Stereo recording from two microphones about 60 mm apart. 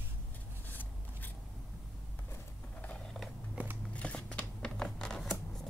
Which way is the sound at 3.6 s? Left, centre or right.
Right.